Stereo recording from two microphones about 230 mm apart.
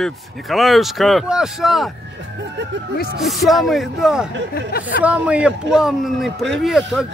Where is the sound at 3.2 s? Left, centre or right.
Centre.